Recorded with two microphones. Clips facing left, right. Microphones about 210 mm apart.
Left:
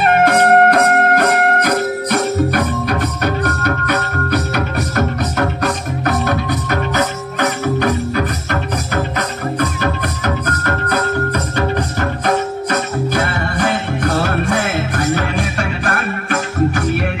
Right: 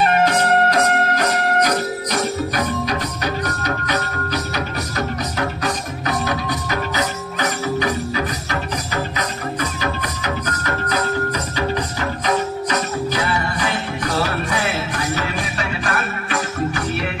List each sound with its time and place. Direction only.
0.2 s music: 55° left (ahead or behind)